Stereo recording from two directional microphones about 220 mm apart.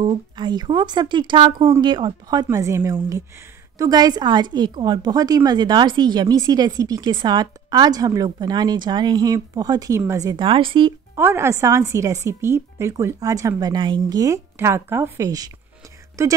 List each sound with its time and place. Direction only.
0.0 s a woman's voice: 20° right (ahead or behind)
11.1 s a woman's voice: 10° right (ahead or behind)